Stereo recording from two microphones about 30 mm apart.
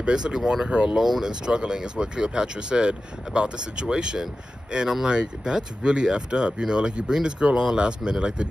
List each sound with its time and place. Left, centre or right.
0.0 s speech: right